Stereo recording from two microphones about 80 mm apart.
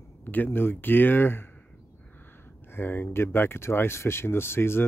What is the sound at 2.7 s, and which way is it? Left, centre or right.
Speech, left.